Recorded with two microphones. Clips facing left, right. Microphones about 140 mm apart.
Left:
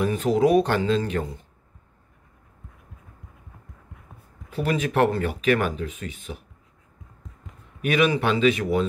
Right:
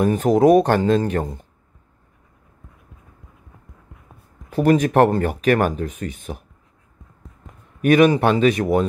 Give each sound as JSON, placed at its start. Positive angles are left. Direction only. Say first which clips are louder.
{"t": 0.0, "sound": "speech", "louder": "right 5 dB", "side_deg": -45}
{"t": 4.6, "sound": "speech", "louder": "right 7 dB", "side_deg": -45}
{"t": 7.8, "sound": "speech", "louder": "right 7 dB", "side_deg": -45}